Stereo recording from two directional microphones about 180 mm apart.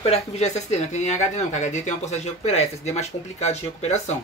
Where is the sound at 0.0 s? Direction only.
35° left (ahead or behind).